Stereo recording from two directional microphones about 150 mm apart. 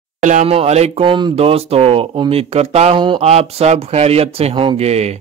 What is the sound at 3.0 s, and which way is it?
Speech, 35° right (ahead or behind).